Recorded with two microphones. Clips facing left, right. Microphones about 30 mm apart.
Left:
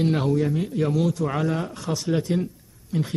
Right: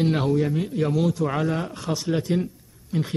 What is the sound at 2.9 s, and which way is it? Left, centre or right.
Speech, centre.